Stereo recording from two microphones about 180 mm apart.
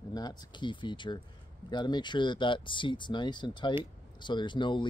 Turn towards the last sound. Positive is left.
turn(degrees=25)  # may be behind; listen again after turning